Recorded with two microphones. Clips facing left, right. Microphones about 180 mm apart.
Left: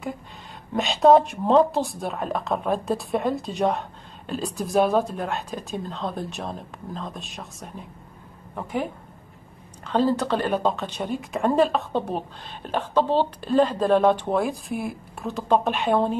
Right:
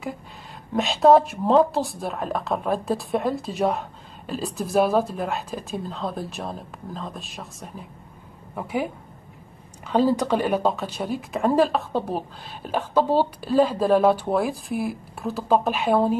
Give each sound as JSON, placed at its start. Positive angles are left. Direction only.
{"t": 0.7, "sound": "speech", "side_deg": 0}
{"t": 9.8, "sound": "speech", "side_deg": -10}